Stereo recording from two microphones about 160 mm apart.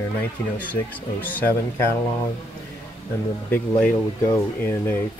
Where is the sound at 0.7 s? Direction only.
10° left (ahead or behind).